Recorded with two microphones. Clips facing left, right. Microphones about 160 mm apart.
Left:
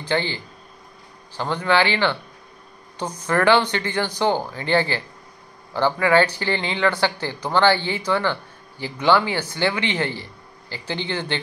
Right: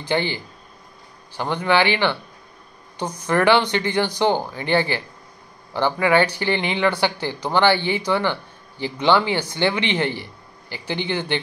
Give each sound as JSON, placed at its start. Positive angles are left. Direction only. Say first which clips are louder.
{"t": 0.0, "sound": "speech", "louder": "right 1 dB", "side_deg": -15}